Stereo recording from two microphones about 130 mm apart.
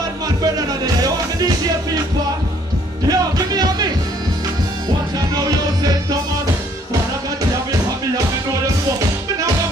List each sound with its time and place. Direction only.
0.4 s music: 30° right (ahead or behind)
3.1 s music: 30° right (ahead or behind)
5.3 s music: 30° right (ahead or behind)